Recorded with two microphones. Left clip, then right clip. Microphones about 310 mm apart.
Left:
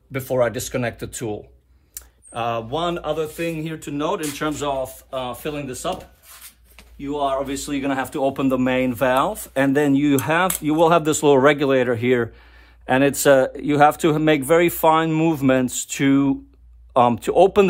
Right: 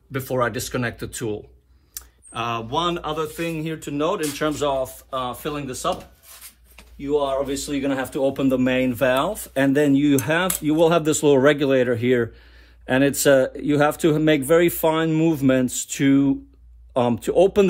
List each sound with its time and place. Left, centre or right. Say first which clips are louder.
0.4 s speech: left 2 dB; centre
2.3 s speech: left 1 dB; centre
3.3 s speech: left 1 dB; centre
7.0 s speech: right 1 dB; centre